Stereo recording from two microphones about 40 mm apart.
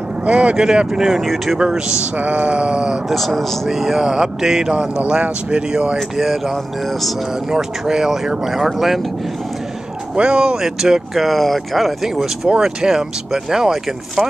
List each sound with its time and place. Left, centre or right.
0.2 s speech: right
0.6 s speech: centre
2.1 s speech: right
3.1 s speech: centre
4.7 s speech: right
6.1 s speech: centre
7.4 s speech: centre
10.1 s speech: right; by 12.3 s centre
12.4 s speech: centre